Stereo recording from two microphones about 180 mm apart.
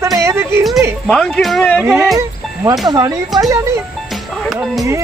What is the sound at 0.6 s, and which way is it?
Speech, centre (ahead or behind).